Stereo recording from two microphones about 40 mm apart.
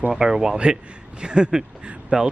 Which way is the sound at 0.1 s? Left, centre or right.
Centre.